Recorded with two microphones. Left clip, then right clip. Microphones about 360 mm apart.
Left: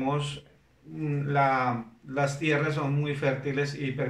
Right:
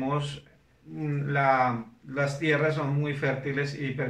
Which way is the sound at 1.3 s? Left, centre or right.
Centre.